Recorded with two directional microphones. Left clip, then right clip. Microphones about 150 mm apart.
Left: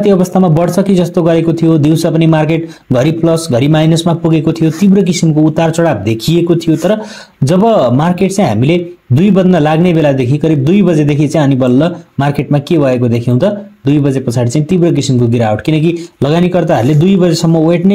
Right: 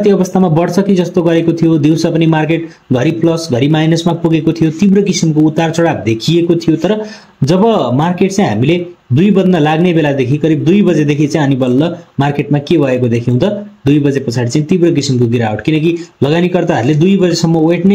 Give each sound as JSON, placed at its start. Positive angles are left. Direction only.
{"t": 0.0, "sound": "speech", "side_deg": 25}